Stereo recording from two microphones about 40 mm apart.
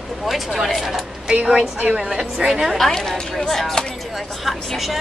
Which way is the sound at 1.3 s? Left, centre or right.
Right.